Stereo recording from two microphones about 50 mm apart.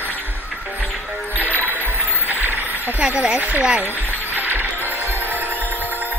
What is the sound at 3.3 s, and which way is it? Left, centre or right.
Speech, right.